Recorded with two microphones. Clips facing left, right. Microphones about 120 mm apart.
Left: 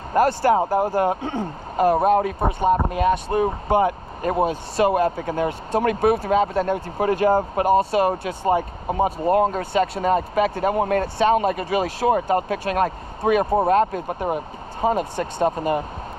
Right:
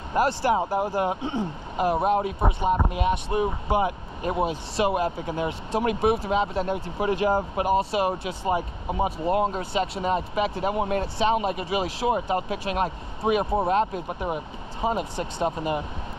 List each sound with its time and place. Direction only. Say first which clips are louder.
0.1 s speech: left 5 dB; 45° left (ahead or behind)
3.3 s speech: left 4 dB; 40° left (ahead or behind)
9.5 s speech: left 5 dB; 50° left (ahead or behind)
14.0 s speech: left 4 dB; 35° left (ahead or behind)